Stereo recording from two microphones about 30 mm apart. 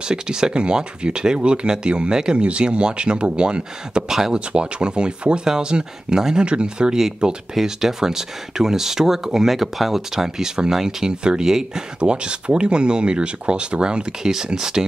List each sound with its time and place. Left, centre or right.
0.0 s speech: right
2.3 s speech: right
6.4 s speech: right
7.6 s speech: centre
11.1 s speech: right
12.0 s speech: right
14.2 s speech: right